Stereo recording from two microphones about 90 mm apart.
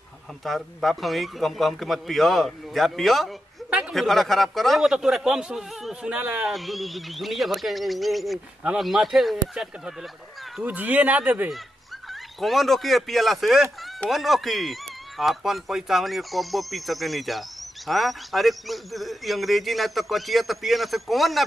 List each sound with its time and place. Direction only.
0.4 s speech: centre (ahead or behind)
6.5 s speech: centre (ahead or behind)
10.6 s speech: 20° right (ahead or behind)
12.1 s speech: centre (ahead or behind)